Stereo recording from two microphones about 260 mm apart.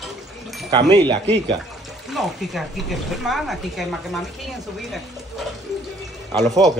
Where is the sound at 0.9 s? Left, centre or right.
Centre.